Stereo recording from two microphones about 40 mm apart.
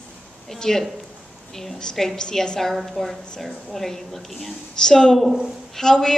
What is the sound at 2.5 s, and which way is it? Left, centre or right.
A woman's voice, centre.